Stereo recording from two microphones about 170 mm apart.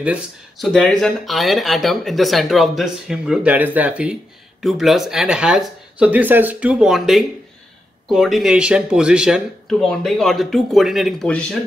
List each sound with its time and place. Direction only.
0.0 s speech: 5° right (ahead or behind)